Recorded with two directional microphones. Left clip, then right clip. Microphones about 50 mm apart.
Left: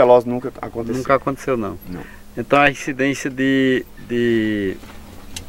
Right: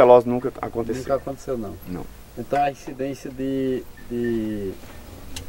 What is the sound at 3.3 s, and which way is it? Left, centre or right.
Speech, left.